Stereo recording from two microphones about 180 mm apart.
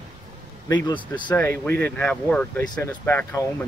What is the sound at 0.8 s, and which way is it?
Speech, 25° left (ahead or behind).